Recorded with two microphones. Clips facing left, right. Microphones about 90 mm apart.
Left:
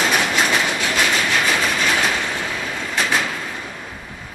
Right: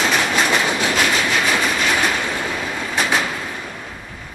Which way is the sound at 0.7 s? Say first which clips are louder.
Right 2 dB; 20° right (ahead or behind).